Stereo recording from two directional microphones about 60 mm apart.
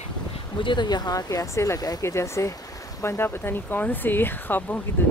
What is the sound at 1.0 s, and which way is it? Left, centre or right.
Speech, left.